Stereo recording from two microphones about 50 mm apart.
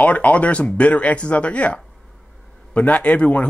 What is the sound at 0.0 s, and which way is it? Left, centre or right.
Speech, left.